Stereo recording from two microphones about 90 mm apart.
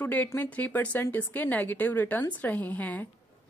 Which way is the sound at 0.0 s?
20° left (ahead or behind).